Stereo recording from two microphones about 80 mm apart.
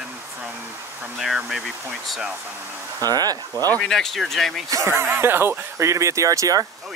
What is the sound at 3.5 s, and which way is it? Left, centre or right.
Speech, left.